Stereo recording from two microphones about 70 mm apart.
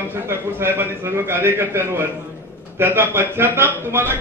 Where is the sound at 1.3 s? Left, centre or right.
Right.